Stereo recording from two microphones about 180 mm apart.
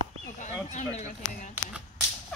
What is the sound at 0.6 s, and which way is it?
Speech, 40° left (ahead or behind).